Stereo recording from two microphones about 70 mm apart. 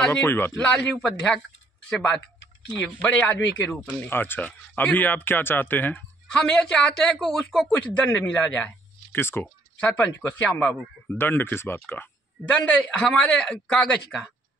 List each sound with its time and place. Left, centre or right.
0.2 s speech: left
0.6 s a woman's voice: centre
3.2 s speech: left
3.5 s a woman's voice: centre
4.1 s speech: left
6.2 s a woman's voice: centre
7.7 s speech: left
9.1 s speech: left
9.8 s speech: centre
12.4 s a woman's voice: centre